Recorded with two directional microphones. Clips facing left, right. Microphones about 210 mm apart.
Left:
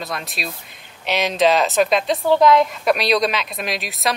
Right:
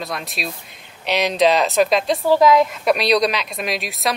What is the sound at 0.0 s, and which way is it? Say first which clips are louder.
A woman's voice: right 1 dB; centre (ahead or behind).